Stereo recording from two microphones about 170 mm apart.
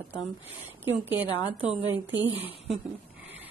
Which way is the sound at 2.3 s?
35° left (ahead or behind).